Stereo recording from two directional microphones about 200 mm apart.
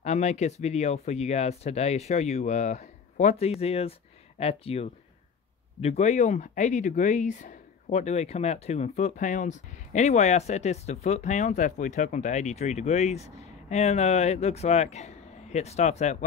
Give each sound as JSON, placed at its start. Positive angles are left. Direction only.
{"t": 0.0, "sound": "speech", "side_deg": 35}